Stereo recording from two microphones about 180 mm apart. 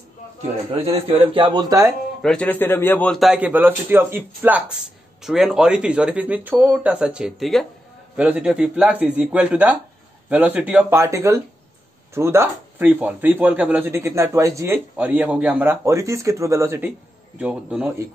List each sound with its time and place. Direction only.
0.7 s a man's voice: 35° right (ahead or behind)
2.2 s a man's voice: 10° left (ahead or behind)